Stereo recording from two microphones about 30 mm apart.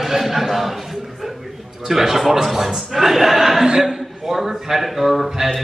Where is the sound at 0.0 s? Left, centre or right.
Centre.